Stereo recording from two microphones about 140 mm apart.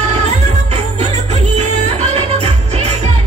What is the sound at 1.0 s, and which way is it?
Music, 50° right (ahead or behind).